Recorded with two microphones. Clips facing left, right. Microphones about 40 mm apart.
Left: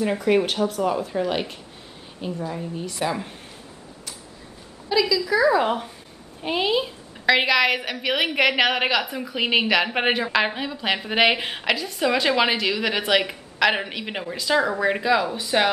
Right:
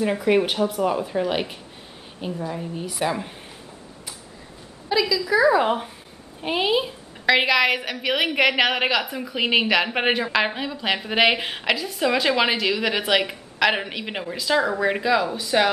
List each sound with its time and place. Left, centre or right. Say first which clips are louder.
0.0 s a woman's voice: even; centre
4.8 s a woman's voice: left 1 dB; centre